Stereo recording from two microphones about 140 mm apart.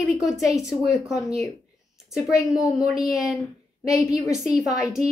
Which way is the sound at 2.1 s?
Centre (ahead or behind).